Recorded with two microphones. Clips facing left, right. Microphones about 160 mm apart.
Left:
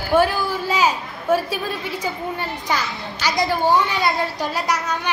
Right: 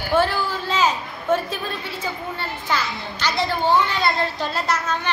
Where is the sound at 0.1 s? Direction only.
10° left (ahead or behind).